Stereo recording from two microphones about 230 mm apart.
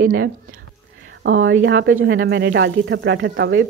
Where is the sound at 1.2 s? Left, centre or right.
Right.